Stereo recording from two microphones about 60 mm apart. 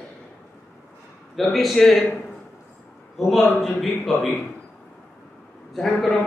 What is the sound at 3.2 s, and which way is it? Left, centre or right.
Speech, centre.